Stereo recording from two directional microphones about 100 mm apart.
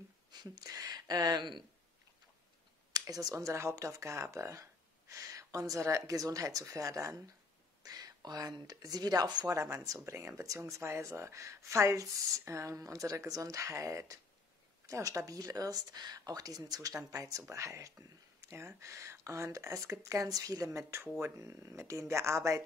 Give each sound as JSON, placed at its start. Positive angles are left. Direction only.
{"t": 0.3, "sound": "speech", "side_deg": -40}
{"t": 2.9, "sound": "speech", "side_deg": -40}
{"t": 9.5, "sound": "speech", "side_deg": -30}